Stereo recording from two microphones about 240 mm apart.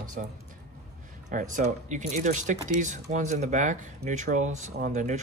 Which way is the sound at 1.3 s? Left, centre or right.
Right.